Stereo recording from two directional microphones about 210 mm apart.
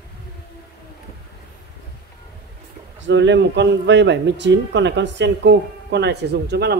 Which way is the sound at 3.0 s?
60° right (ahead or behind).